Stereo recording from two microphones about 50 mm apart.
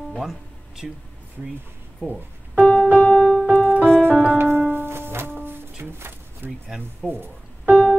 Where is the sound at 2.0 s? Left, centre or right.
Right.